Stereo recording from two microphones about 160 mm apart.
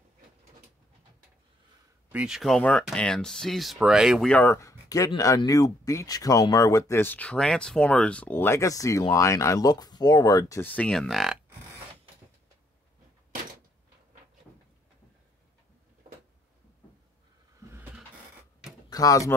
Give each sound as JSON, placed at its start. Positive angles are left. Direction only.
{"t": 2.1, "sound": "speech", "side_deg": -5}
{"t": 10.6, "sound": "speech", "side_deg": 10}
{"t": 18.9, "sound": "speech", "side_deg": 20}